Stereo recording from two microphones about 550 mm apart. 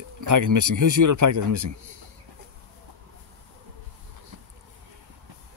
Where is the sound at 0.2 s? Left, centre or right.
Right.